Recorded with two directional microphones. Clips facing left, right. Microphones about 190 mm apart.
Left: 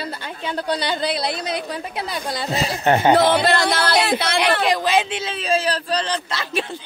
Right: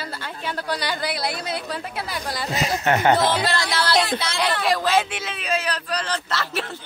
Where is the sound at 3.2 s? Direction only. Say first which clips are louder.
Left 5 dB; 60° left (ahead or behind).